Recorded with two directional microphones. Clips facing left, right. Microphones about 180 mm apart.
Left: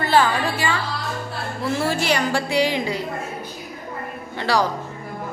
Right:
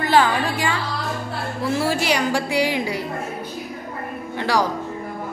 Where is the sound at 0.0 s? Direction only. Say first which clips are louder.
Right 1 dB; 15° right (ahead or behind).